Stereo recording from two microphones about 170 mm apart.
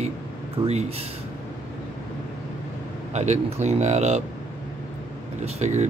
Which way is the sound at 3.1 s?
40° right (ahead or behind).